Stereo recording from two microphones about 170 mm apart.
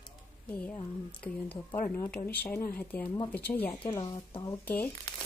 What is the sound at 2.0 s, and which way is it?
Speech, 5° left (ahead or behind).